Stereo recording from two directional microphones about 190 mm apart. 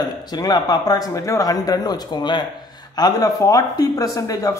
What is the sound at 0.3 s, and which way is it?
A man's voice, 20° left (ahead or behind).